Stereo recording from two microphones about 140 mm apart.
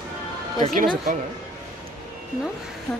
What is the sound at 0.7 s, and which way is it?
Speech, 75° right (ahead or behind).